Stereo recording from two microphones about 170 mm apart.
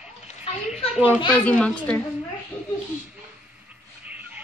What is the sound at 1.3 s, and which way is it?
Speech, 10° left (ahead or behind).